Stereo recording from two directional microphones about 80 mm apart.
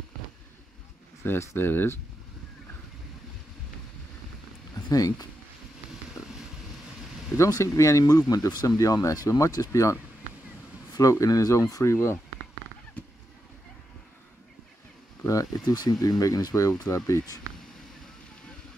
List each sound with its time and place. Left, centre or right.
1.2 s speech: left
4.8 s speech: left
7.3 s speech: left
15.2 s speech: left